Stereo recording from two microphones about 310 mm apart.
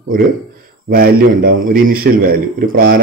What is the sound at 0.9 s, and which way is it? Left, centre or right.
A man's voice, right.